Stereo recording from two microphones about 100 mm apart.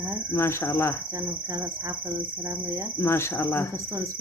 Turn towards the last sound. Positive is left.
turn(degrees=25)  # may be behind; listen again after turning